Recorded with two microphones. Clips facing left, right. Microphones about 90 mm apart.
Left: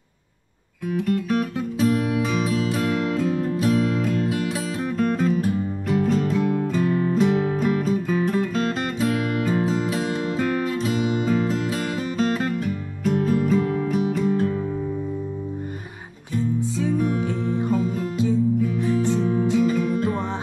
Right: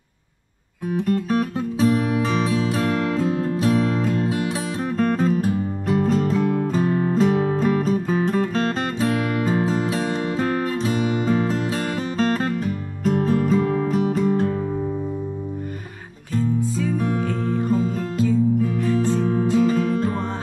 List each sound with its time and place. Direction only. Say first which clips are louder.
0.8 s music: right 1 dB; 35° right (ahead or behind)
4.9 s music: right 2 dB; 40° right (ahead or behind)
17.2 s music: right 1 dB; 50° right (ahead or behind)
17.6 s music: right 1 dB; 20° left (ahead or behind)
19.6 s music: right 2 dB; 35° right (ahead or behind)